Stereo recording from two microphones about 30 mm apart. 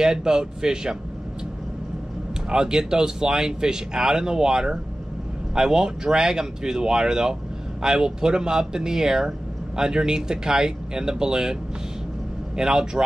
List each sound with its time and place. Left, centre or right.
0.0 s speech: right
2.5 s speech: centre
12.5 s speech: centre